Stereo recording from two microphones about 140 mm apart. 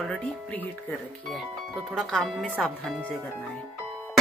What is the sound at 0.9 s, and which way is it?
Speech, centre (ahead or behind).